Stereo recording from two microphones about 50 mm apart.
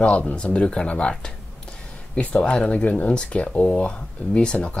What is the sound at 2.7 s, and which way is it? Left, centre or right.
Speech, left.